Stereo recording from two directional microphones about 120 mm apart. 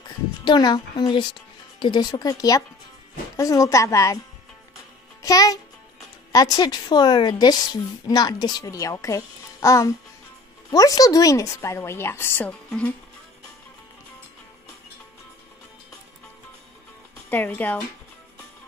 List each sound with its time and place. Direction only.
0.5 s a woman's voice: 35° left (ahead or behind)
5.2 s a woman's voice: 30° left (ahead or behind)
12.4 s speech: 10° left (ahead or behind)
17.3 s speech: 15° left (ahead or behind)